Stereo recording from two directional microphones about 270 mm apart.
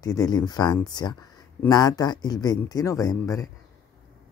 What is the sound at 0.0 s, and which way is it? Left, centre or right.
Speech, centre.